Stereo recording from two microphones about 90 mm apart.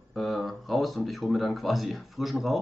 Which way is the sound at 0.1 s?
Centre (ahead or behind).